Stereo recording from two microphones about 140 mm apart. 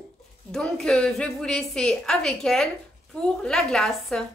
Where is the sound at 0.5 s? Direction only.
5° left (ahead or behind).